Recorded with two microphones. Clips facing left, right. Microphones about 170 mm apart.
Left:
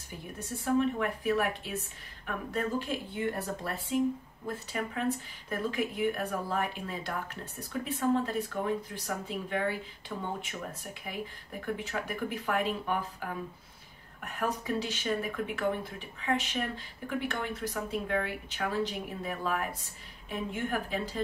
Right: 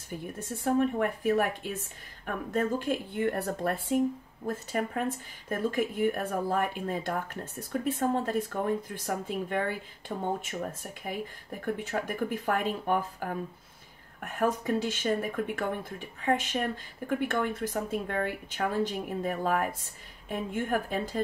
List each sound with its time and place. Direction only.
0.7 s speech: 50° right (ahead or behind)